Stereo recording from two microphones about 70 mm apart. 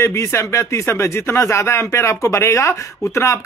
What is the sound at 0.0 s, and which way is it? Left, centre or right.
Speech, left.